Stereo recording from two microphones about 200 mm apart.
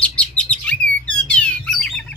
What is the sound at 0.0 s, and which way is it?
Bird, 5° left (ahead or behind).